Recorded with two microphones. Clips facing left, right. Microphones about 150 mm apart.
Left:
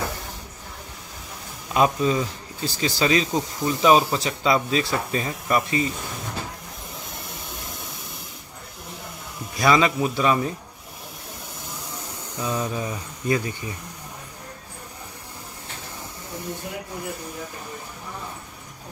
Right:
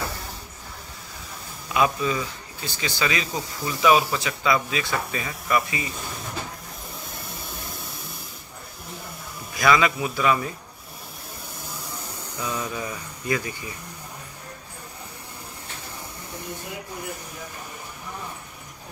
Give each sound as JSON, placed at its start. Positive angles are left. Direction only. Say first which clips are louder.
{"t": 1.7, "sound": "speech", "louder": "left 3 dB", "side_deg": 40}
{"t": 9.6, "sound": "speech", "louder": "left 1 dB", "side_deg": 25}
{"t": 12.4, "sound": "speech", "louder": "left 3 dB", "side_deg": 25}